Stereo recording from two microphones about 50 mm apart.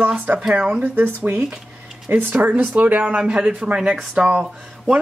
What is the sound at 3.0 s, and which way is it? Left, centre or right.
Speech, right.